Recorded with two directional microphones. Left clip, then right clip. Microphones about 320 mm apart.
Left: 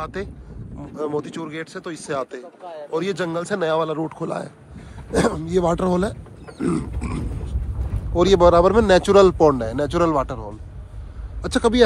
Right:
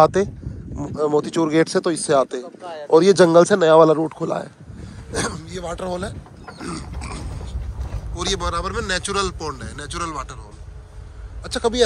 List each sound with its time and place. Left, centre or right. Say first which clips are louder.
0.0 s speech: right 15 dB; centre
2.6 s a sound: right 2 dB; right
2.9 s speech: right 12 dB; centre
5.1 s dog: left 6 dB; centre
5.6 s speech: left 7 dB; centre
6.6 s dog: left 8 dB; centre
8.1 s speech: left 10 dB; centre
11.4 s speech: left 2 dB; centre